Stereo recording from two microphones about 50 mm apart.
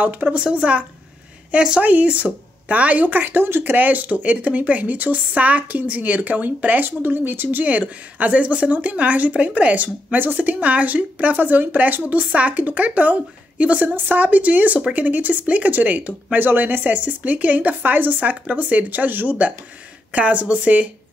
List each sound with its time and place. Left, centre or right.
0.0 s speech: right
0.6 s a woman's voice: right
1.5 s speech: centre
1.8 s speech: right
3.7 s speech: right
10.1 s a woman's voice: right